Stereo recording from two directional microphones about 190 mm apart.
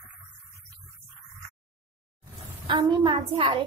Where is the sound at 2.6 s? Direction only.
25° right (ahead or behind).